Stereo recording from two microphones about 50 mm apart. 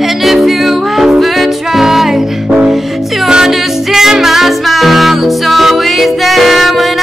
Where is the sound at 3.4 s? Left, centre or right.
Centre.